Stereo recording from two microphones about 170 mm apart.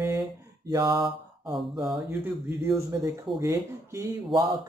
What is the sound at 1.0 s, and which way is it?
Mantra, centre (ahead or behind).